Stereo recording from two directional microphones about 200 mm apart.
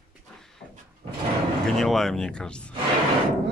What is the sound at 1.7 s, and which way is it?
Speech, centre (ahead or behind).